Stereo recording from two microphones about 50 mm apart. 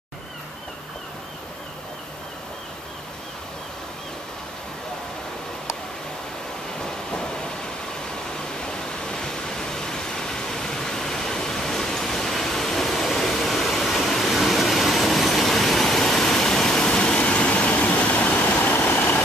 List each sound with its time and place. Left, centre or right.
7.1 s train: centre
8.5 s a sound: centre; by 18.9 s left
18.9 s vehicle: left